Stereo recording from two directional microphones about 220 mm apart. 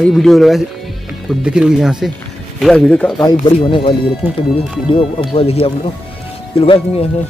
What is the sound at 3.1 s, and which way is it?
Speech, 20° left (ahead or behind).